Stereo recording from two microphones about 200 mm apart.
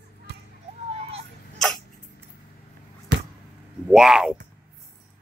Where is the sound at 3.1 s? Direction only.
60° right (ahead or behind).